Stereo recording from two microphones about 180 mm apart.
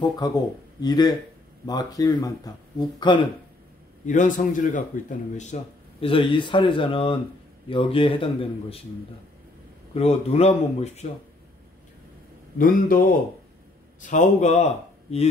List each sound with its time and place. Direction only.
0.2 s speech: 20° left (ahead or behind)
4.0 s a man's voice: 45° left (ahead or behind)
9.9 s speech: 35° left (ahead or behind)
12.5 s a man's voice: 50° left (ahead or behind)